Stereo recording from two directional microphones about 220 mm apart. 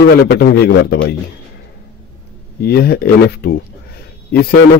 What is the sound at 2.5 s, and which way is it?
A man's voice, 45° left (ahead or behind).